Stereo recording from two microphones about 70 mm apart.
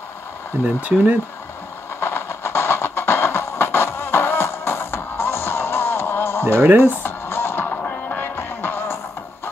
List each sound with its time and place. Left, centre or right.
0.5 s speech: right
0.8 s speech: centre
2.0 s train: left
6.4 s speech: right
7.0 s music: left